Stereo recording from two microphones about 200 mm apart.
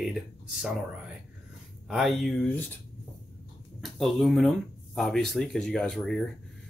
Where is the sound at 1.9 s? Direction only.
Centre (ahead or behind).